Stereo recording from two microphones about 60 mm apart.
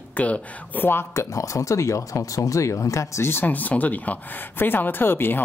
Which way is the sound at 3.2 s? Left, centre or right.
Left.